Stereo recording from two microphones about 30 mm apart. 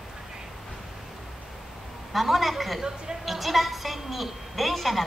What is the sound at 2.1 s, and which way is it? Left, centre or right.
A woman's voice, centre.